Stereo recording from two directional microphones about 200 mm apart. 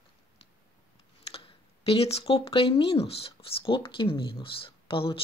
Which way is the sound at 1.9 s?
30° left (ahead or behind).